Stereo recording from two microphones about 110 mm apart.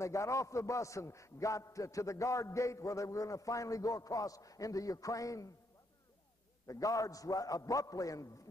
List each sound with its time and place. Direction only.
0.0 s a man's voice: 30° left (ahead or behind)
6.7 s a man's voice: 30° left (ahead or behind)